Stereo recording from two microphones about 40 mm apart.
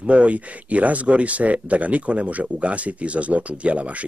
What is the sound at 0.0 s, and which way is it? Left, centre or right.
Speech, right.